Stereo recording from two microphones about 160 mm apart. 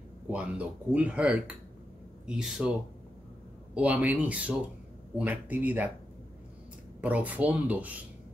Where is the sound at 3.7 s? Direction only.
10° right (ahead or behind).